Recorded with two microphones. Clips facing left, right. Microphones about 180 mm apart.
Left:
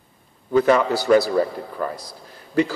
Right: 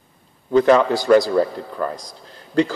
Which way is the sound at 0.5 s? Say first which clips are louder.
Right 3 dB; 5° left (ahead or behind).